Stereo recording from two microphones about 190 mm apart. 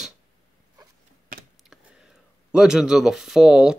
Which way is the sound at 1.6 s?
Centre (ahead or behind).